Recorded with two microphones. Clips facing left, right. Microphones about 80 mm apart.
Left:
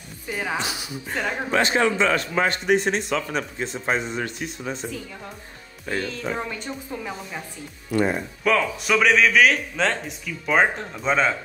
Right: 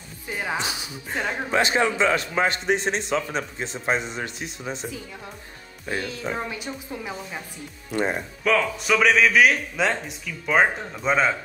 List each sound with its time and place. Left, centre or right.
0.3 s a woman's voice: centre
0.6 s a man's voice: right
5.9 s a woman's voice: centre
8.5 s speech: centre